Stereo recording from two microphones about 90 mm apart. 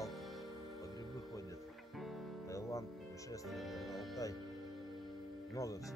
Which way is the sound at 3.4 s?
Centre (ahead or behind).